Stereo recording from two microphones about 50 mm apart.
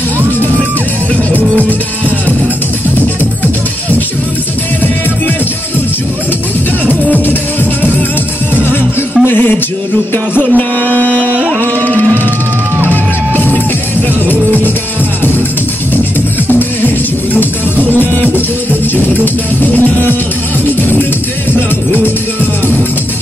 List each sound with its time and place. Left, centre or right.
9.2 s music: left
10.5 s a sound: left
12.9 s music: left
17.7 s music: right
19.2 s music: left